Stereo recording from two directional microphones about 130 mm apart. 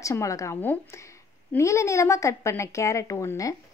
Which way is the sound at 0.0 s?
25° left (ahead or behind).